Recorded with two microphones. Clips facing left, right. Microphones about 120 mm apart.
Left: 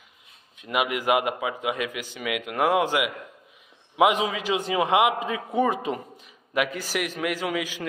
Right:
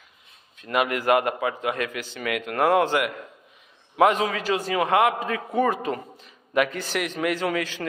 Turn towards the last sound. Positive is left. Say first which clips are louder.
# right 2 dB
turn(degrees=10)  # may be behind; listen again after turning